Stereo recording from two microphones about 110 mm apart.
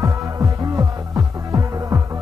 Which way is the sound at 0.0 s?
30° right (ahead or behind).